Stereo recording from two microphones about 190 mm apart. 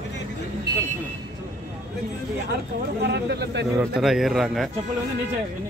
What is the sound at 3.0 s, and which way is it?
Speech, 60° right (ahead or behind).